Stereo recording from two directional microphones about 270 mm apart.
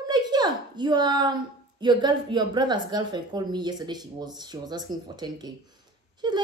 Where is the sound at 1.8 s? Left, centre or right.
Centre.